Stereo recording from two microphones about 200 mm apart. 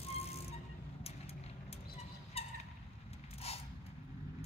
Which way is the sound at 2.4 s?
30° left (ahead or behind).